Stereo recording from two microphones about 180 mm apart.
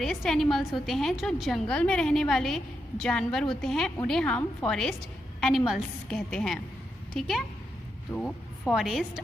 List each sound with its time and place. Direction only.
0.0 s a woman's voice: centre (ahead or behind)